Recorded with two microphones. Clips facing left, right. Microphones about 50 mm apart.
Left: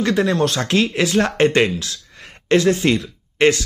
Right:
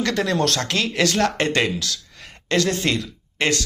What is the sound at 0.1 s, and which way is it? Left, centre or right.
Speech, centre.